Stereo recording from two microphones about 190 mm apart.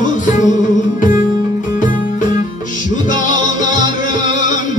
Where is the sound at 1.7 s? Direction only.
40° left (ahead or behind).